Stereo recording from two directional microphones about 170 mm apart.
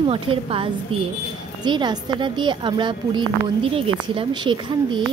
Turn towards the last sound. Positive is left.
turn(degrees=-30)  # may be behind; listen again after turning